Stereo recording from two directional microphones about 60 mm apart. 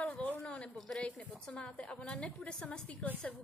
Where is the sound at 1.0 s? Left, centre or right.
Centre.